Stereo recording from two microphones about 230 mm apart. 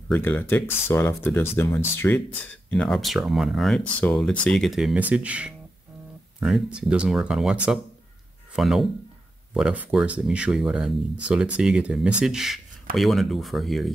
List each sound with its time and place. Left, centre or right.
0.1 s speech: centre